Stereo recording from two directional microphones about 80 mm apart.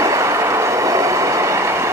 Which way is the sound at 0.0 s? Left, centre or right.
Right.